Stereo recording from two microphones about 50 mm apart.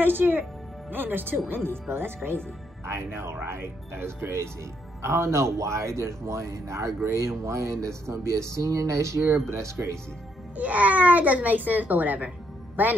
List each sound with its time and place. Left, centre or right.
0.0 s a child's voice: right
9.6 s speech: right
10.5 s a child's voice: right